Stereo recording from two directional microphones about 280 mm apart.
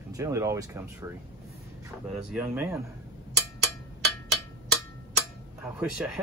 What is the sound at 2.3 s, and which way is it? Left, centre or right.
Speech, centre.